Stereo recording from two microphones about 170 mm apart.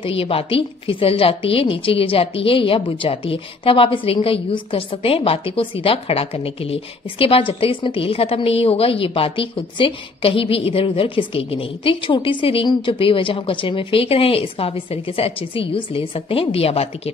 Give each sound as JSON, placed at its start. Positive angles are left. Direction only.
{"t": 0.0, "sound": "a woman's voice", "side_deg": 35}